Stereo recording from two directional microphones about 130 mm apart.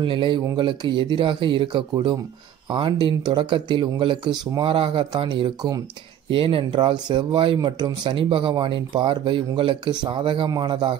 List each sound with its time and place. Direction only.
0.0 s speech: 40° right (ahead or behind)
6.3 s speech: 45° right (ahead or behind)